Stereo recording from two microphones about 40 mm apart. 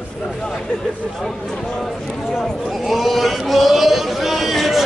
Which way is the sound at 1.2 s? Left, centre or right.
Centre.